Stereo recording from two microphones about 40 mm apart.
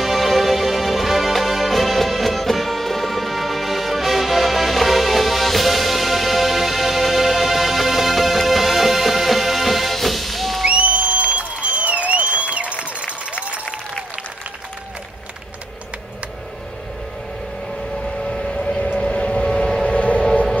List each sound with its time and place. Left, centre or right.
0.0 s music: centre
10.7 s music: right
18.3 s civil defense siren: left
18.9 s a sound: left